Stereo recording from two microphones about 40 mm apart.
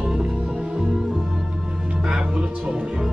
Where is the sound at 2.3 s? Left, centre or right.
Centre.